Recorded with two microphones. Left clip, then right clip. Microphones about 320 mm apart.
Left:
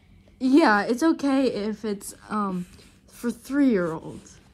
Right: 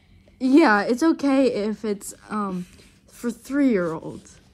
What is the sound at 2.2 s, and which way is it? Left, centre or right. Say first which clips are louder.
A woman's voice: even; centre.